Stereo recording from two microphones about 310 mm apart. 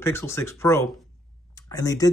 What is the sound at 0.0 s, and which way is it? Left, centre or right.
Speech, centre.